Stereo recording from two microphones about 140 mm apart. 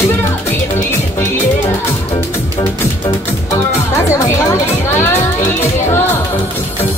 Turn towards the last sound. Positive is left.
turn(degrees=15)  # may be behind; listen again after turning